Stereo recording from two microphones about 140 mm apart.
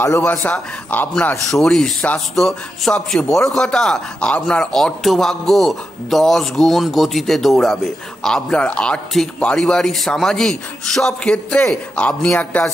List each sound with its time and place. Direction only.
0.0 s a man's voice: 15° left (ahead or behind)